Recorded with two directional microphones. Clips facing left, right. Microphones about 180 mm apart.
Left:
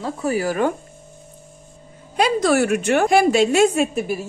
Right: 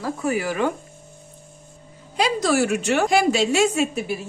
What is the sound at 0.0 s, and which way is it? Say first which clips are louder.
Speech: left 2 dB; 35° left (ahead or behind).